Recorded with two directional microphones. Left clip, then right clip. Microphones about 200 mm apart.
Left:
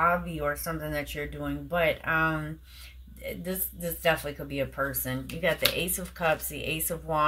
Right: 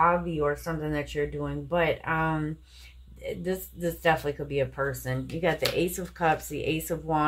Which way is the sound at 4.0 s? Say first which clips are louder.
Right 1 dB; 25° right (ahead or behind).